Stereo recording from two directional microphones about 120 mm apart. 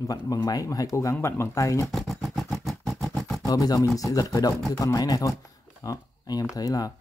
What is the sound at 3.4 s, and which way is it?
Speech, 30° left (ahead or behind).